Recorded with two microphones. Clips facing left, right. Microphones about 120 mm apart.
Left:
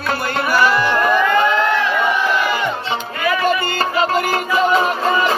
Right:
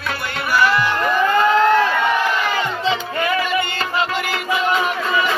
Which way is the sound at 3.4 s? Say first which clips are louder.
Left 4 dB; 40° left (ahead or behind).